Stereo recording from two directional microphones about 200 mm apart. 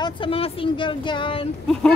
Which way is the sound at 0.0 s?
25° left (ahead or behind).